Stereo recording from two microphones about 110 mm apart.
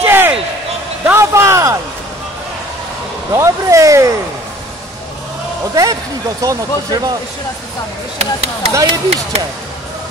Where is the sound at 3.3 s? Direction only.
25° right (ahead or behind).